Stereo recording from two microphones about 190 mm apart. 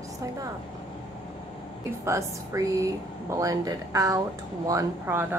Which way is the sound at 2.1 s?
15° right (ahead or behind).